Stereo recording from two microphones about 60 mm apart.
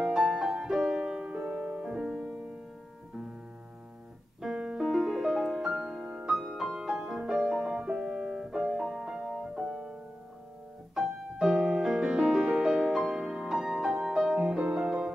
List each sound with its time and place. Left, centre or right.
0.0 s music: centre
4.4 s music: centre
8.4 s piano: centre
9.7 s music: right
11.0 s music: centre